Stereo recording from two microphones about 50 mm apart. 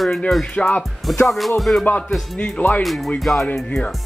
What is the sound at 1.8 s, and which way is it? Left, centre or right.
Music, left.